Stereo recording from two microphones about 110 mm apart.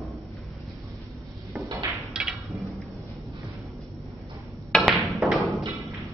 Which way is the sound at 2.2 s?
Centre (ahead or behind).